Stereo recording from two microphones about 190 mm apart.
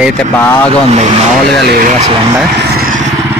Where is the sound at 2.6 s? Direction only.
55° right (ahead or behind).